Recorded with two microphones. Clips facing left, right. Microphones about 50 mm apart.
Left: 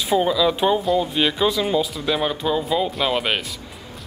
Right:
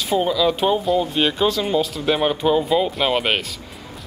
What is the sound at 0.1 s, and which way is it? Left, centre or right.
Speech, centre.